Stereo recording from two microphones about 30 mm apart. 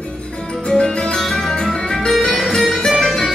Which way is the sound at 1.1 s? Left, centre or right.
Centre.